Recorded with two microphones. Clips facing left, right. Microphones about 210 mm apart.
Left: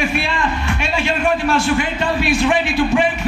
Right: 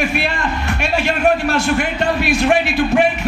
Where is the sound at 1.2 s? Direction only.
40° right (ahead or behind).